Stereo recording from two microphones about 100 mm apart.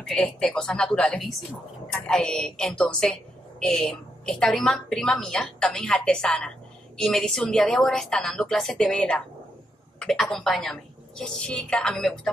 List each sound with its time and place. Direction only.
0.0 s a woman's voice: 5° left (ahead or behind)